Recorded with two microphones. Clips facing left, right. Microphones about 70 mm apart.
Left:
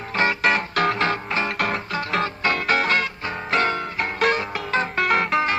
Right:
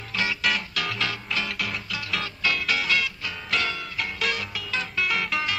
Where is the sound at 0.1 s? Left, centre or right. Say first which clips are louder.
Left 6 dB; left.